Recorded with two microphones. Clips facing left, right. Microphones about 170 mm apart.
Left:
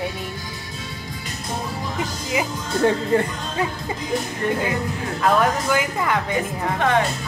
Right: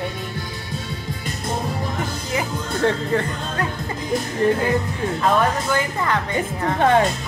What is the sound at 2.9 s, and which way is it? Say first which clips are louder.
Speech: left 2 dB; 10° left (ahead or behind).